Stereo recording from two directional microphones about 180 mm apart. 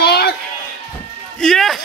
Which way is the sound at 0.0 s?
60° left (ahead or behind).